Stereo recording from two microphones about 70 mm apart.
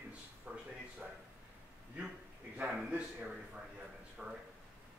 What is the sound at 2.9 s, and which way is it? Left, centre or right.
Speech, centre.